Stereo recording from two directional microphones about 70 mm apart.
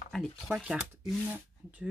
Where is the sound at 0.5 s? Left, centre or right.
Centre.